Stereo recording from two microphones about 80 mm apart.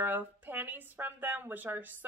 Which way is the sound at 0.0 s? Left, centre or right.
Right.